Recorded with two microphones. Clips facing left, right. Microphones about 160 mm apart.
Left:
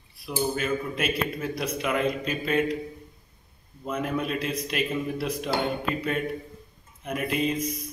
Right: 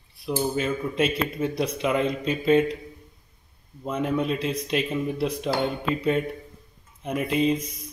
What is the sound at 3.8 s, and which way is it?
Speech, 25° right (ahead or behind).